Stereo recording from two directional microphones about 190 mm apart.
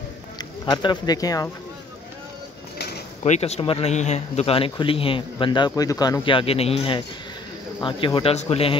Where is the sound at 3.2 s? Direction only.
35° left (ahead or behind).